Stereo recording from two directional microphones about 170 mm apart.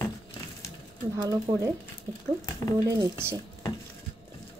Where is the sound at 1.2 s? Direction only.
20° right (ahead or behind).